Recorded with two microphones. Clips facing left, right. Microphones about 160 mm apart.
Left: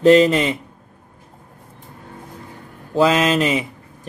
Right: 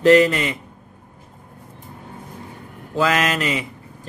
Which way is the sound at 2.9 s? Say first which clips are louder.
Left 4 dB; 20° left (ahead or behind).